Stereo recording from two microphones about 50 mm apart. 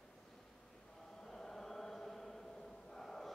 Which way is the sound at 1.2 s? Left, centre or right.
Centre.